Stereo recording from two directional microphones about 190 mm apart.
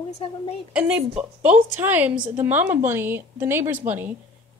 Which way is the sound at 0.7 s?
5° right (ahead or behind).